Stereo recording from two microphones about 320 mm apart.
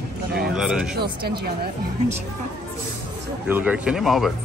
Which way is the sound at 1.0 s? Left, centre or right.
Right.